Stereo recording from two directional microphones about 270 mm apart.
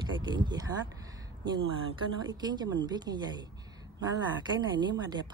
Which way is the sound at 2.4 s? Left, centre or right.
Centre.